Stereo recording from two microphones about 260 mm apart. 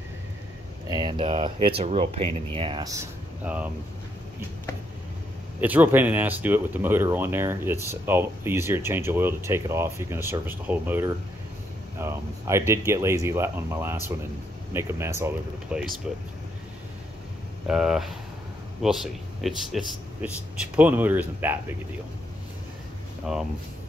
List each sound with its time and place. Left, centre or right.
0.8 s speech: centre
5.6 s speech: centre
17.6 s speech: centre
23.3 s speech: centre